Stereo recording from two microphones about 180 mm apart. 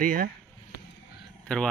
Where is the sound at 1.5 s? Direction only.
5° left (ahead or behind).